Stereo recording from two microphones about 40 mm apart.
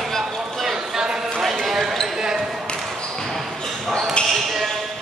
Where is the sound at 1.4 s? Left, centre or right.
Centre.